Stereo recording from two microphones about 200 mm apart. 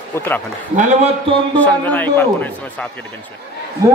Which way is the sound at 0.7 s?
30° right (ahead or behind).